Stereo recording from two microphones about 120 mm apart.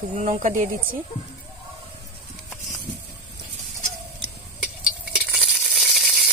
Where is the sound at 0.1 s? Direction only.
90° right.